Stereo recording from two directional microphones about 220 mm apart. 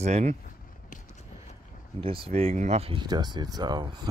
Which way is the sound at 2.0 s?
25° right (ahead or behind).